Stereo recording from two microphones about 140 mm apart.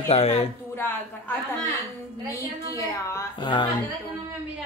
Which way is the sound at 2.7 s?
20° left (ahead or behind).